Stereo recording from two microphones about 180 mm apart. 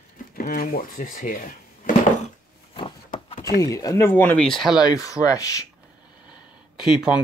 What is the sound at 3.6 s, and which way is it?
Speech, 20° left (ahead or behind).